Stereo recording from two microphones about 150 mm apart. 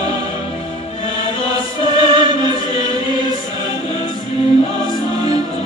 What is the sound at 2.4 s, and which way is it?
Chant, 30° right (ahead or behind).